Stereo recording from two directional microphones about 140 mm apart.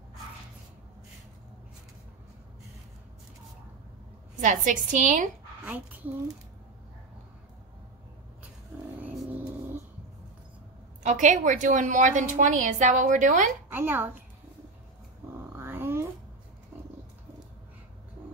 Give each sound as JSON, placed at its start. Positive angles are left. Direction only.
{"t": 4.4, "sound": "a woman's voice", "side_deg": -65}
{"t": 9.0, "sound": "vehicle", "side_deg": -10}
{"t": 11.0, "sound": "a woman's voice", "side_deg": -60}
{"t": 13.7, "sound": "speech", "side_deg": -15}
{"t": 15.5, "sound": "a sound", "side_deg": -15}